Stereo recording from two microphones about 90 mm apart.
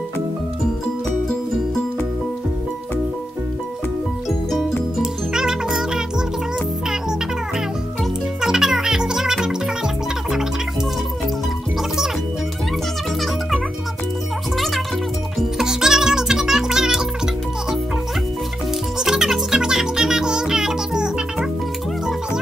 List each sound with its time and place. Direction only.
5.0 s music: 5° right (ahead or behind)
8.4 s music: 5° right (ahead or behind)
15.3 s music: 5° right (ahead or behind)
18.9 s music: 5° right (ahead or behind)